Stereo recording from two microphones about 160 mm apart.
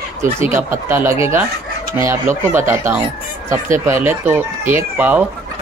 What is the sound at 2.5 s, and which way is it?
Speech, 15° right (ahead or behind).